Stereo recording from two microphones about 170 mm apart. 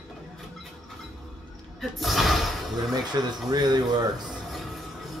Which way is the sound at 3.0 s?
25° right (ahead or behind).